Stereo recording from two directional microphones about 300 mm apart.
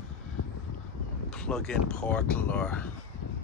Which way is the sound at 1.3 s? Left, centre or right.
Centre.